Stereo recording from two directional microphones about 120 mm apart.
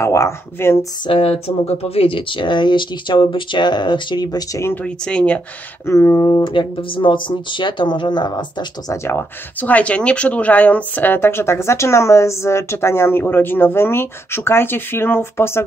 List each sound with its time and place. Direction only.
0.0 s speech: 25° left (ahead or behind)
1.0 s speech: 55° left (ahead or behind); by 4.6 s 35° left (ahead or behind)
4.8 s speech: 10° left (ahead or behind)
5.9 s speech: 25° left (ahead or behind)
6.4 s speech: 40° left (ahead or behind)
8.9 s speech: 20° left (ahead or behind)